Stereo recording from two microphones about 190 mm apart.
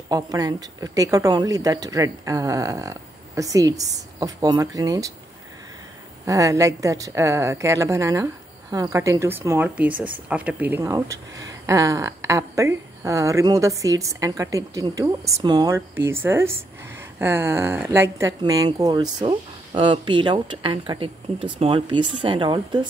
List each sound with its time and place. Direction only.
0.1 s speech: 20° right (ahead or behind)
6.2 s speech: 15° right (ahead or behind)